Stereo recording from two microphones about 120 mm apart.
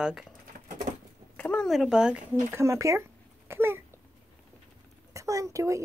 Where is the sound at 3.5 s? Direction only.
20° right (ahead or behind).